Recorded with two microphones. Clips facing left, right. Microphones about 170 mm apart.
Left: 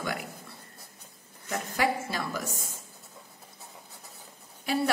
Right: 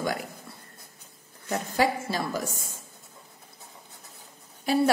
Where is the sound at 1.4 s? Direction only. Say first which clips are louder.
Right 3 dB; 30° right (ahead or behind).